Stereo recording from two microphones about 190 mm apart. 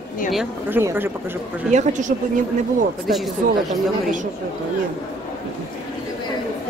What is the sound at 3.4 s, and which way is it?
Speech, 45° right (ahead or behind).